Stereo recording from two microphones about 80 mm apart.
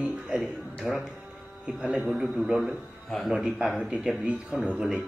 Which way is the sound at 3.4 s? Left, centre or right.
Centre.